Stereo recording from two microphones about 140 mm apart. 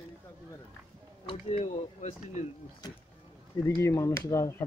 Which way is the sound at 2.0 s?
65° left (ahead or behind).